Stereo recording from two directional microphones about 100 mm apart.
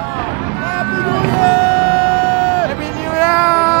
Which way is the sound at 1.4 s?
5° right (ahead or behind).